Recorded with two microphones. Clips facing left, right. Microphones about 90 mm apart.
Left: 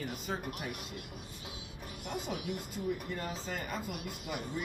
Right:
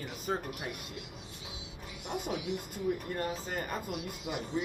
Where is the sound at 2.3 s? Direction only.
50° left (ahead or behind).